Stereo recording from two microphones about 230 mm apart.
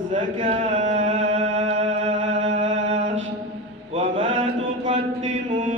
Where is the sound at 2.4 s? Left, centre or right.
Right.